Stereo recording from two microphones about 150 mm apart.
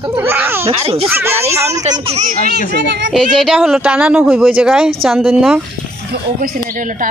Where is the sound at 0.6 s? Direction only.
40° right (ahead or behind).